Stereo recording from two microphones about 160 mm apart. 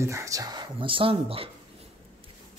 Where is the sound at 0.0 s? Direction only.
20° right (ahead or behind); by 1.5 s 35° right (ahead or behind).